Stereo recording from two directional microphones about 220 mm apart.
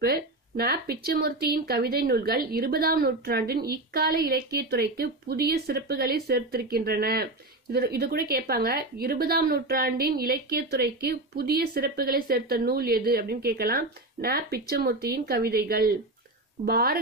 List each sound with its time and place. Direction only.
0.0 s a woman's voice: 45° right (ahead or behind)